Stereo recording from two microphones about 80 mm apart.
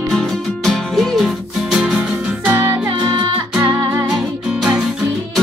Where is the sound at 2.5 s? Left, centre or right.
Right.